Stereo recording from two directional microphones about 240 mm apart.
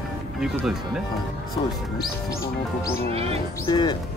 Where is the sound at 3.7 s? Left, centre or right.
Centre.